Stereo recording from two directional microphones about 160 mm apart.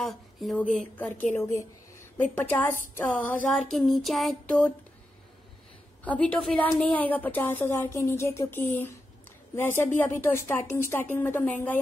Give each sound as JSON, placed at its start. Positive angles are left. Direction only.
{"t": 0.0, "sound": "a woman's voice", "side_deg": 0}
{"t": 3.0, "sound": "a sound", "side_deg": 10}
{"t": 6.0, "sound": "a woman's voice", "side_deg": 10}